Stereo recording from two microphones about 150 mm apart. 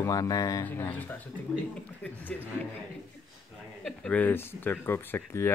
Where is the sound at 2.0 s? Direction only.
10° left (ahead or behind).